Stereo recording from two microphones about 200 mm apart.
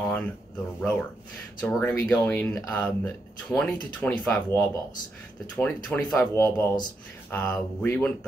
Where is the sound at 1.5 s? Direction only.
10° left (ahead or behind).